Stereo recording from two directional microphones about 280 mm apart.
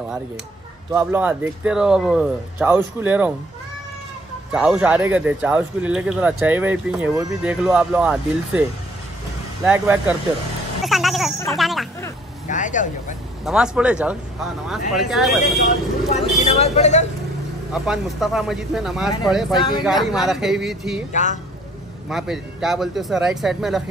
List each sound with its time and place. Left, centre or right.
0.9 s speech: centre
4.5 s speech: centre
9.7 s speech: centre
10.8 s a sound: centre
12.4 s speech: left
13.5 s speech: centre
16.1 s speech: left
17.7 s speech: centre
19.5 s speech: centre
20.0 s speech: centre
21.1 s speech: left
22.1 s speech: centre